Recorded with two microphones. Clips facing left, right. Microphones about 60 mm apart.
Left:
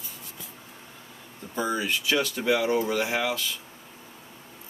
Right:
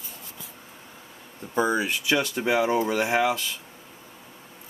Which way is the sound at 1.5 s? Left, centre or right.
Right.